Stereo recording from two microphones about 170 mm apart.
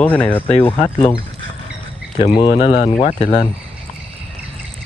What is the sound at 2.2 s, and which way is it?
Speech, 30° left (ahead or behind).